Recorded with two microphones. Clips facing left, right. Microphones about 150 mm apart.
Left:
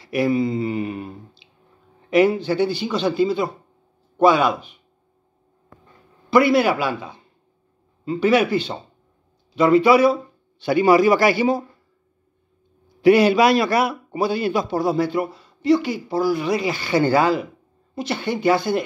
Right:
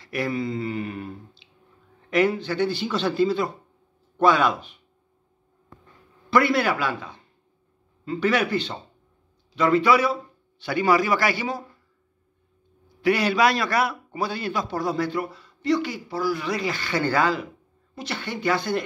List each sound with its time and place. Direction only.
0.0 s a man's voice: 10° left (ahead or behind)
6.3 s a man's voice: 10° left (ahead or behind)
13.0 s a man's voice: 15° left (ahead or behind)